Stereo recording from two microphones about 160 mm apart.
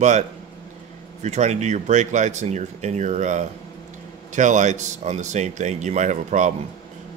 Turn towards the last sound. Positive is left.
turn(degrees=-50)  # may be behind; listen again after turning